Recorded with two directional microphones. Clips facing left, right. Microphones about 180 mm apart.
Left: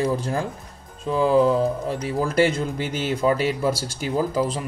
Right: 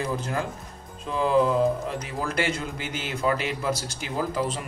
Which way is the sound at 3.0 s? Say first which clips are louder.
Left 5 dB; 40° left (ahead or behind).